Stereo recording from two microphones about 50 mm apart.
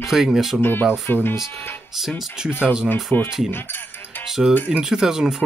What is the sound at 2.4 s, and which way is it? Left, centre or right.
Speech, centre.